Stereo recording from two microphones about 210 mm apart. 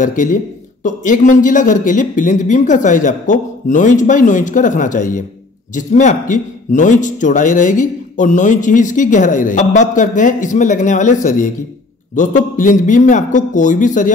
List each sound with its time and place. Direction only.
0.0 s speech: 40° left (ahead or behind)